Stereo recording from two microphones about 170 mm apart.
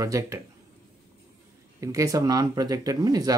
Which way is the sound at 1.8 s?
20° right (ahead or behind).